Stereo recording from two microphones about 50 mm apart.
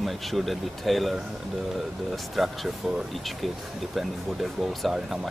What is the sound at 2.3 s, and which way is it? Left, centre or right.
Speech, centre.